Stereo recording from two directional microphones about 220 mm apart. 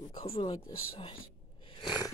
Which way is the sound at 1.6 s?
20° left (ahead or behind).